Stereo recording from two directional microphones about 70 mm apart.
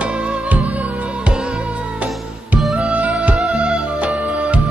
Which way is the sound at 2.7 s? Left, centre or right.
Centre.